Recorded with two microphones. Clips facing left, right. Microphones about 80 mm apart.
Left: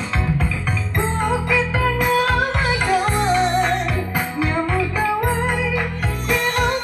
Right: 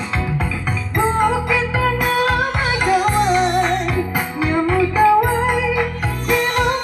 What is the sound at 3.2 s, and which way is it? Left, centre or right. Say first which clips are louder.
Music: right 2 dB; left.